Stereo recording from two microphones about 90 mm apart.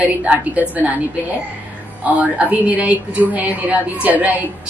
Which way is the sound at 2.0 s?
15° right (ahead or behind).